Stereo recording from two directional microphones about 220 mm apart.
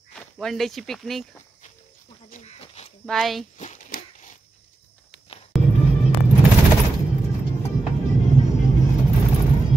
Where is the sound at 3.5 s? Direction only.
35° left (ahead or behind).